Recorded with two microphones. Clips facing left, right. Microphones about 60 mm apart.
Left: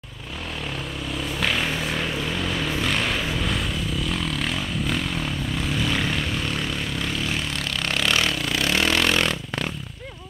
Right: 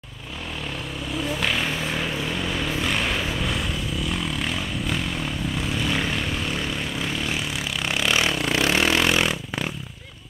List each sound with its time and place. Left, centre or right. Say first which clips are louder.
1.1 s vehicle: right 1 dB; centre